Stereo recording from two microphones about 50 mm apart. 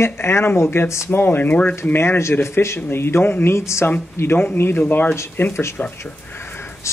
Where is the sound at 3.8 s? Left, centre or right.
Left.